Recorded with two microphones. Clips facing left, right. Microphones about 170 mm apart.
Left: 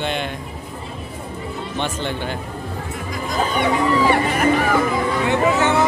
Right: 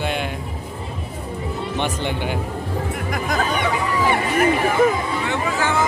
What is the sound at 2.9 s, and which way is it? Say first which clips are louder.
Music: right 1 dB; 60° right (ahead or behind).